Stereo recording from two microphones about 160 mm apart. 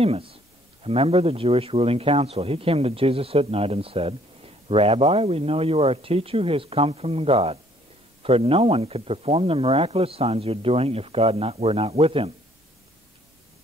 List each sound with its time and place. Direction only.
0.0 s speech: 35° right (ahead or behind)